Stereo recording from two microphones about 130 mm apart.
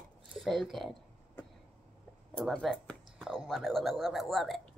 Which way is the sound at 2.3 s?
5° left (ahead or behind).